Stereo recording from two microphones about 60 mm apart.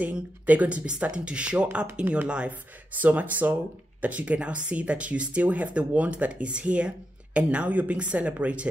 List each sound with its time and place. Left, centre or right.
0.0 s speech: right